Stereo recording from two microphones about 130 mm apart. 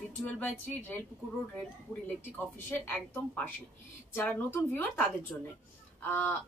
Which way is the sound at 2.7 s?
15° left (ahead or behind).